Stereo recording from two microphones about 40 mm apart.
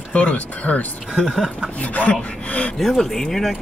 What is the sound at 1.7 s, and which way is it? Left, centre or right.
Speech, left.